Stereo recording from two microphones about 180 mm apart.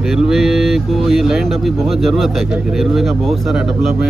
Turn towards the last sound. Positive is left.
turn(degrees=0)  # may be behind; listen again after turning